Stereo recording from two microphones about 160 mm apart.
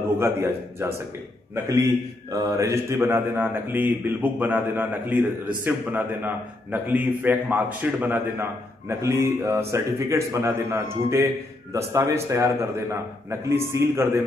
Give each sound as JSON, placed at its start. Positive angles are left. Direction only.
{"t": 0.2, "sound": "a man's voice", "side_deg": -15}